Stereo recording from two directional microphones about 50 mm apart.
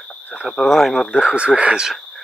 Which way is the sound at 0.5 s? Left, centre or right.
Centre.